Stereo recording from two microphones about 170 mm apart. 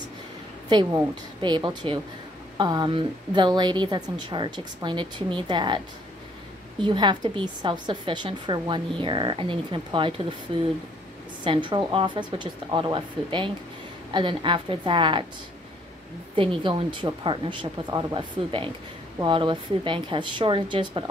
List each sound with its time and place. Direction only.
0.7 s a woman's voice: 25° right (ahead or behind)
6.8 s a woman's voice: 25° right (ahead or behind)
16.3 s a woman's voice: 30° right (ahead or behind)